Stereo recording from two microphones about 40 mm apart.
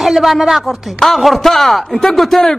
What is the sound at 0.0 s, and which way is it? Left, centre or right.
A woman's voice, centre.